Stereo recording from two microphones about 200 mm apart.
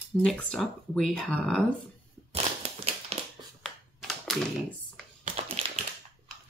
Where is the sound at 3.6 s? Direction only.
Centre (ahead or behind).